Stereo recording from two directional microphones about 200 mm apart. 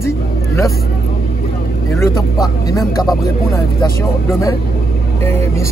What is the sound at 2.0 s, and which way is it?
Speech, 15° left (ahead or behind).